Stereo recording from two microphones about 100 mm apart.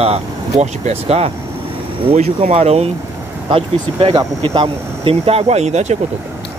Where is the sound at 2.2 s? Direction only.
90° right.